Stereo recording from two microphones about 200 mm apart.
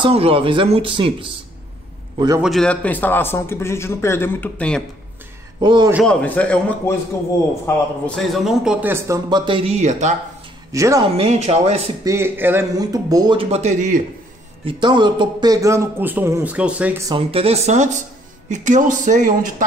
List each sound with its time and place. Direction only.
0.0 s speech: 30° right (ahead or behind)
2.1 s a man's voice: 20° right (ahead or behind)
2.4 s a man's voice: centre (ahead or behind)
5.6 s speech: 20° right (ahead or behind)
6.0 s a man's voice: 5° left (ahead or behind)
8.2 s speech: centre (ahead or behind); by 10.1 s 35° right (ahead or behind)
10.7 s a woman's voice: 15° right (ahead or behind)
11.1 s speech: 35° right (ahead or behind)
12.0 s speech: 15° right (ahead or behind); by 14.0 s 40° right (ahead or behind)
14.6 s a man's voice: 25° right (ahead or behind); by 17.0 s 5° right (ahead or behind)
17.1 s speech: 30° right (ahead or behind)